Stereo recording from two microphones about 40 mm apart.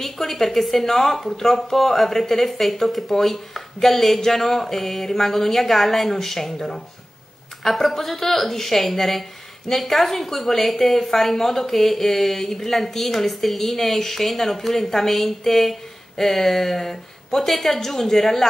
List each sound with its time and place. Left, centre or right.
0.0 s a woman's voice: centre